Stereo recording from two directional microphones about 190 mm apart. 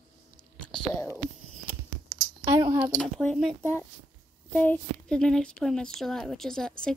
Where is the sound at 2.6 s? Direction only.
15° right (ahead or behind).